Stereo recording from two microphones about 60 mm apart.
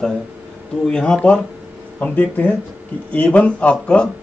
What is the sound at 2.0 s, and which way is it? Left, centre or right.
Speech, left.